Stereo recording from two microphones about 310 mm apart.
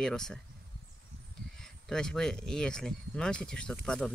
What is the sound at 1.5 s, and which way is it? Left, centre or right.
Speech, centre.